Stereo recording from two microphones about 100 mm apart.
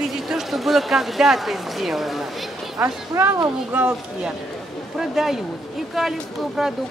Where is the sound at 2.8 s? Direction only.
25° right (ahead or behind).